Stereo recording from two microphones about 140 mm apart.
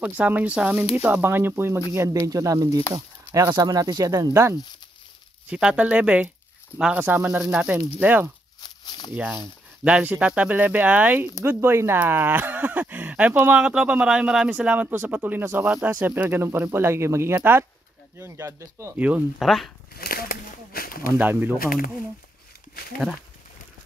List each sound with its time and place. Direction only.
0.0 s speech: 10° right (ahead or behind)
5.5 s speech: 5° right (ahead or behind)
8.5 s a sound: 30° left (ahead or behind)
9.1 s speech: 10° right (ahead or behind)
19.3 s speech: centre (ahead or behind)
20.0 s a sound: 90° left
21.2 s speech: 15° right (ahead or behind)
21.5 s speech: 90° left